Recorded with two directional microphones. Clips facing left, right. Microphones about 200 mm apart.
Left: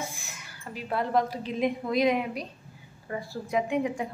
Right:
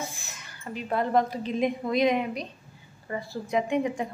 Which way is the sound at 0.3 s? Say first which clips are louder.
Right 3 dB; 10° left (ahead or behind).